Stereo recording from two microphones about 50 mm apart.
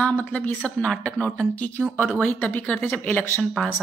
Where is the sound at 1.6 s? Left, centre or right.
Left.